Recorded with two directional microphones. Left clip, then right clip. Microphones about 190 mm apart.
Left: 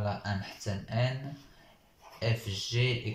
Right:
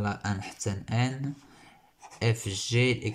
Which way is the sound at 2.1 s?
65° right (ahead or behind).